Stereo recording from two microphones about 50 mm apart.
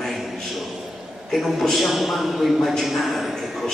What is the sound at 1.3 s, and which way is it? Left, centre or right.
A man's voice, centre.